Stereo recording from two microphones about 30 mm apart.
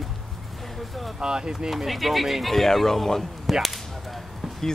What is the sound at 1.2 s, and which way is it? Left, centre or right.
Speech, right.